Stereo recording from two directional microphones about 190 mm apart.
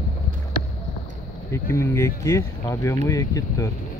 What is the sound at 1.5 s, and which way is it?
Speech, 15° left (ahead or behind).